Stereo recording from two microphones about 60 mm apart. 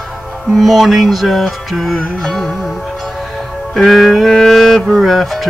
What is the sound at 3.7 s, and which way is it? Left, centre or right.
Music, centre.